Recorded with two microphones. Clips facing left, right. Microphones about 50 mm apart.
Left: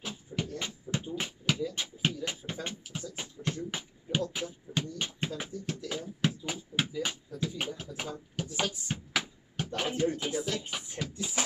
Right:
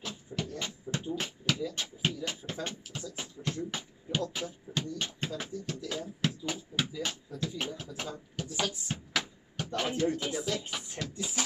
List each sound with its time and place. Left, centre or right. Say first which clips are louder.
0.0 s beatboxing: left 1 dB; centre
3.4 s beatboxing: left 1 dB; centre
3.7 s music: left 1 dB; centre
4.7 s a sound: left 1 dB; centre
6.9 s beatboxing: left 2 dB; centre
8.4 s a sound: left 1 dB; centre
10.0 s music: even; centre
10.4 s music: even; centre